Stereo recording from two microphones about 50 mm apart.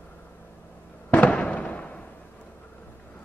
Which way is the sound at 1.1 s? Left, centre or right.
Left.